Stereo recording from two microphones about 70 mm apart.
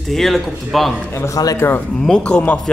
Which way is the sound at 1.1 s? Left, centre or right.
Left.